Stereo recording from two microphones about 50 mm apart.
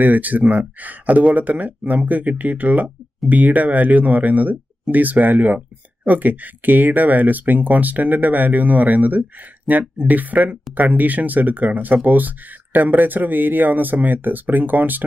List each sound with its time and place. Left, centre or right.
0.0 s speech: right